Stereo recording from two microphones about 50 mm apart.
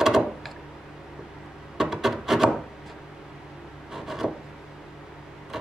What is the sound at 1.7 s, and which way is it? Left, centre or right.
Rub, centre.